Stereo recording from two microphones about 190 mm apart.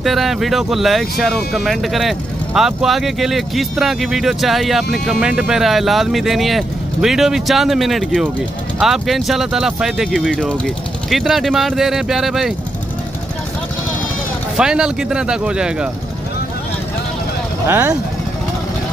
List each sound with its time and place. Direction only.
0.0 s speech: centre (ahead or behind)
14.6 s speech: 5° right (ahead or behind)
17.6 s speech: 10° right (ahead or behind)